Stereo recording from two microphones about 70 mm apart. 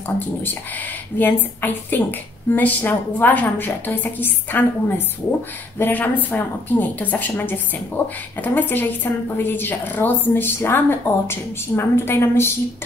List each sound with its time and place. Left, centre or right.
1.1 s a woman's voice: left